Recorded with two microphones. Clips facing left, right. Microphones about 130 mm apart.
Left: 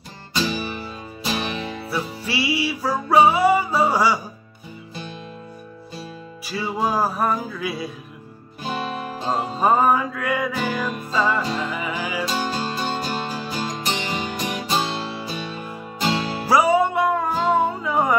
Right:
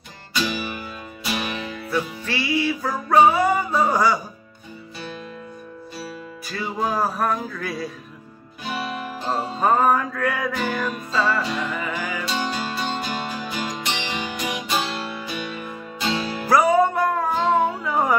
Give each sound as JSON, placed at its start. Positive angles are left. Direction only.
{"t": 0.4, "sound": "music", "side_deg": 35}
{"t": 1.9, "sound": "music", "side_deg": 10}
{"t": 6.4, "sound": "music", "side_deg": 10}
{"t": 9.3, "sound": "music", "side_deg": 10}
{"t": 11.1, "sound": "music", "side_deg": 15}
{"t": 11.4, "sound": "music", "side_deg": 35}
{"t": 11.7, "sound": "music", "side_deg": 10}
{"t": 12.3, "sound": "music", "side_deg": 35}
{"t": 16.4, "sound": "music", "side_deg": 5}